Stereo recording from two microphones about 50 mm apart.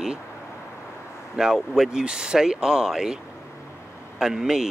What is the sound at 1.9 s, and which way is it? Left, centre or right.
Speech, centre.